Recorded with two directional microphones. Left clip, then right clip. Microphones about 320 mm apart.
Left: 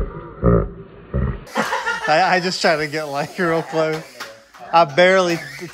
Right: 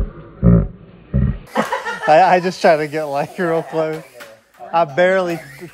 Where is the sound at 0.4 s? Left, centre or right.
Right.